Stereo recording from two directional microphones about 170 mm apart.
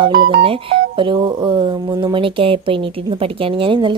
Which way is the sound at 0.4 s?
35° right (ahead or behind).